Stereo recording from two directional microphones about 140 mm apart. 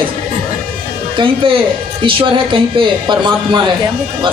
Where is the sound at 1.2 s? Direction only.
40° right (ahead or behind).